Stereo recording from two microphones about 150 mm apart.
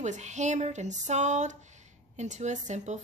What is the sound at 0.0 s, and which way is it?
Speech, 50° right (ahead or behind).